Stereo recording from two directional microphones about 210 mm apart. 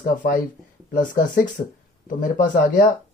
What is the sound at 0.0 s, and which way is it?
Speech, 40° left (ahead or behind).